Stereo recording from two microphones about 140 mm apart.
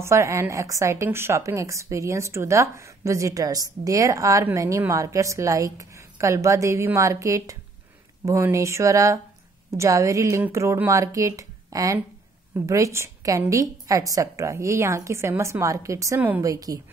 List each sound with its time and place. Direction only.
0.0 s a woman's voice: 20° right (ahead or behind)